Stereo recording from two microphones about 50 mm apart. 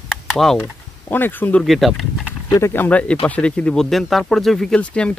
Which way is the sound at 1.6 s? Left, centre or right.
Centre.